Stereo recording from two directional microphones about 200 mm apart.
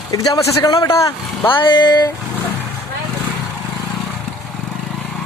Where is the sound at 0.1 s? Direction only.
20° left (ahead or behind).